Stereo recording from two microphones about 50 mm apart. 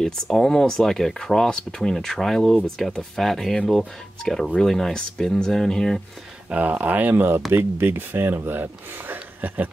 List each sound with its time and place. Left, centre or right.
0.0 s speech: centre
6.5 s speech: right